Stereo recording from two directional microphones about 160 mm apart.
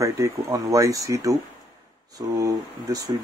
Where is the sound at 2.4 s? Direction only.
20° right (ahead or behind).